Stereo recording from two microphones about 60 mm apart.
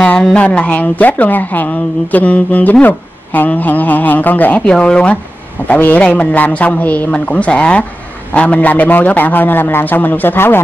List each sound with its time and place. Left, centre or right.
0.0 s a woman's voice: centre
4.6 s a woman's voice: centre; by 10.6 s left